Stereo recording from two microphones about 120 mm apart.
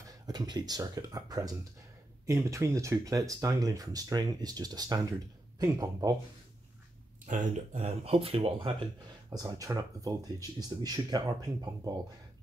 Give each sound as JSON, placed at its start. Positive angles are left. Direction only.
{"t": 0.1, "sound": "speech", "side_deg": -30}
{"t": 7.2, "sound": "speech", "side_deg": -85}
{"t": 9.3, "sound": "speech", "side_deg": -35}